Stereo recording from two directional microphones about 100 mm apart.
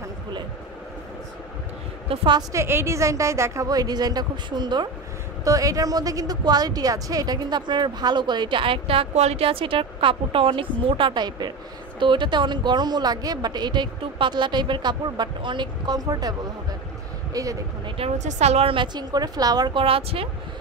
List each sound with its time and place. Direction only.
2.0 s a woman's voice: 55° right (ahead or behind)
2.5 s a woman's voice: 25° right (ahead or behind); by 4.8 s 50° right (ahead or behind)
5.4 s speech: 35° right (ahead or behind)
17.8 s speech: 80° right
18.9 s a woman's voice: 40° right (ahead or behind)
19.8 s speech: 75° right (ahead or behind)